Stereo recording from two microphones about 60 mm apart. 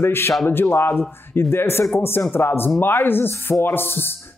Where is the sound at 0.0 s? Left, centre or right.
Left.